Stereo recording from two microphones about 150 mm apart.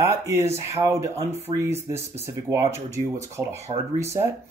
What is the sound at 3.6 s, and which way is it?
Speech, 45° right (ahead or behind).